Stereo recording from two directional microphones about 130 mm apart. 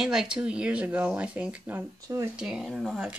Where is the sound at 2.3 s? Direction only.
5° right (ahead or behind).